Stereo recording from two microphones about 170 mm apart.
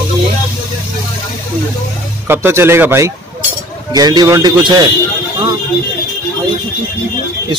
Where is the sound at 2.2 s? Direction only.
10° right (ahead or behind).